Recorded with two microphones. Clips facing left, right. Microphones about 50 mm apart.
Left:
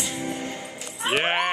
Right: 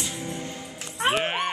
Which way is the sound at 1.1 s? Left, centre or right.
Left.